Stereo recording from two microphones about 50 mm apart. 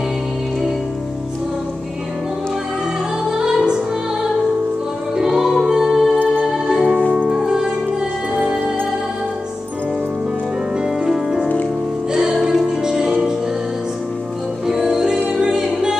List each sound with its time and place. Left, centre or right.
3.3 s music: centre
5.1 s music: centre
7.0 s music: right
7.2 s music: centre
10.8 s music: centre
14.7 s music: centre